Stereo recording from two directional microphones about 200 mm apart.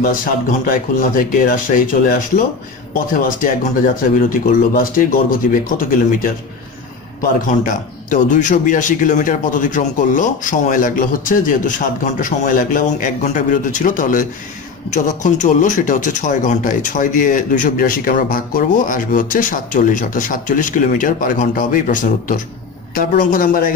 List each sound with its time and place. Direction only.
0.7 s a man's voice: 40° left (ahead or behind)